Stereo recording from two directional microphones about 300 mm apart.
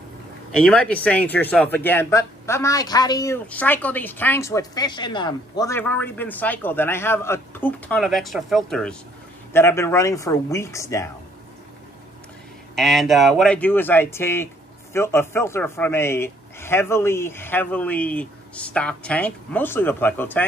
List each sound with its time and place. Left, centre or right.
0.6 s speech: centre
12.7 s speech: centre